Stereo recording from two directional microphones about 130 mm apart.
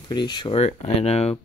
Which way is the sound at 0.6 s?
55° left (ahead or behind).